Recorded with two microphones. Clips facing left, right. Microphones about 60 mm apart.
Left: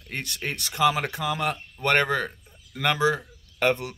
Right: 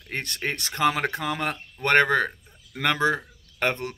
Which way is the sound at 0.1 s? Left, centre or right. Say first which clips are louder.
Right 2 dB; right.